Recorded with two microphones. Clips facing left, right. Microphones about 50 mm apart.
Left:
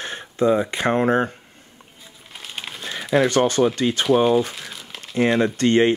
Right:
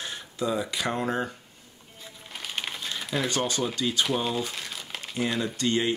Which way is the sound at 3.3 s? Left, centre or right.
Left.